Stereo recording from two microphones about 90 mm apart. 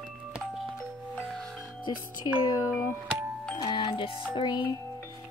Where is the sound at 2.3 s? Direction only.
70° left (ahead or behind).